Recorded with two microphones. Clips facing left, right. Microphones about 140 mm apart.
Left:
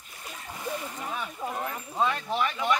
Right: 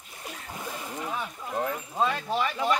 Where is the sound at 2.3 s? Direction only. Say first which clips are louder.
Right 1 dB; 5° right (ahead or behind).